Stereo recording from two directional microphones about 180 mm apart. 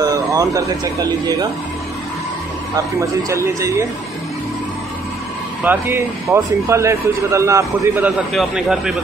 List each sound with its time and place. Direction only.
0.0 s a sound: 20° right (ahead or behind)
2.7 s speech: 15° right (ahead or behind)
5.6 s speech: 10° right (ahead or behind)
8.3 s speech: centre (ahead or behind)